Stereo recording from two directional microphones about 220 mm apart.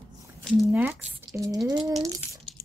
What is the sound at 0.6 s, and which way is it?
Speech, 10° right (ahead or behind).